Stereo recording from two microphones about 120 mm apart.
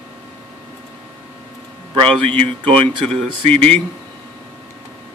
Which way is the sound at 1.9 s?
50° right (ahead or behind).